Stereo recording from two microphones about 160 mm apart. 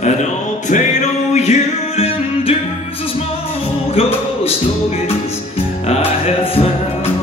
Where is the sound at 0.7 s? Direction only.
45° left (ahead or behind).